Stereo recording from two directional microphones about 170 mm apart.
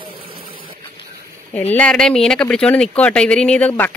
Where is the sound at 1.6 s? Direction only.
10° left (ahead or behind).